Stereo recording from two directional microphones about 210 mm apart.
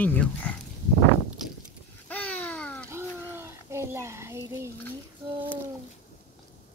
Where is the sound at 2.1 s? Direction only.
5° left (ahead or behind).